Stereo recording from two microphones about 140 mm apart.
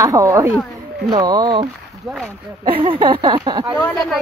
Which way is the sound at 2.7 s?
35° right (ahead or behind).